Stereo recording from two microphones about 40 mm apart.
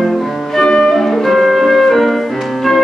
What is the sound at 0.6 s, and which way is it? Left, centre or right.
Music, centre.